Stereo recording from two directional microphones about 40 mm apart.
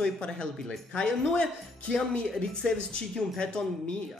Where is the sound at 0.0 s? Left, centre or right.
Centre.